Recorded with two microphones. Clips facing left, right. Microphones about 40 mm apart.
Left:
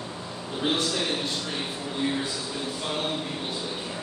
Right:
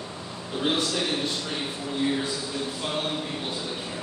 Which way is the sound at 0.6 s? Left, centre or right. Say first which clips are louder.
Right 1 dB; centre.